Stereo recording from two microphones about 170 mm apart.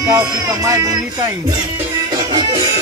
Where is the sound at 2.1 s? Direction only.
20° right (ahead or behind).